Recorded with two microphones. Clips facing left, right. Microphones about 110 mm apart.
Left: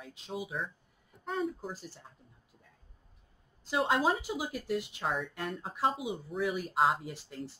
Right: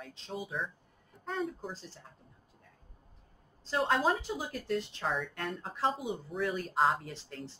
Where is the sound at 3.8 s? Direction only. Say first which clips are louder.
Even; 5° left (ahead or behind).